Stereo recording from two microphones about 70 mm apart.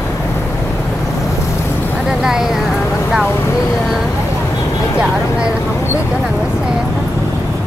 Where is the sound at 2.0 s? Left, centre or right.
Centre.